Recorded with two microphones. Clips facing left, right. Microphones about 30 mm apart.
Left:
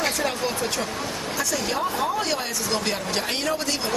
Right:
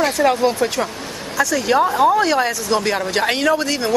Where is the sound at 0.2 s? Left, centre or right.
Right.